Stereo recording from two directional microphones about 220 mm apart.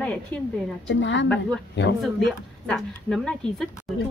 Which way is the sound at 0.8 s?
55° left (ahead or behind).